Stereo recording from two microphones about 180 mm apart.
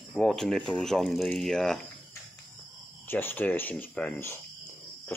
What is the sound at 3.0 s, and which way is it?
Speech, 10° left (ahead or behind).